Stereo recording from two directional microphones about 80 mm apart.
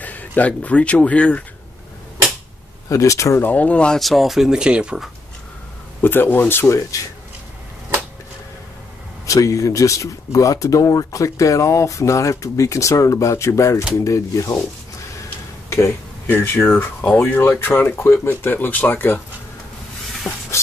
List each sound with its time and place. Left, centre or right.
0.0 s speech: centre
2.9 s speech: left
3.3 s speech: left
4.0 s speech: centre
5.9 s speech: left
9.2 s speech: left
16.3 s speech: left
17.0 s speech: centre
20.2 s a sound: left